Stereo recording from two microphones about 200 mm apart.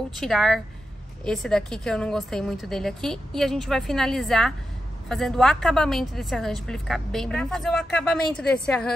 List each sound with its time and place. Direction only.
0.2 s a woman's voice: centre (ahead or behind)